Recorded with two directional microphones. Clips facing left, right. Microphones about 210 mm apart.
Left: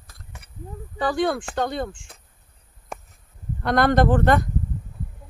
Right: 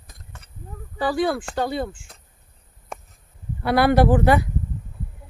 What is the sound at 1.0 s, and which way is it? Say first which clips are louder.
Speech: right 1 dB; centre (ahead or behind).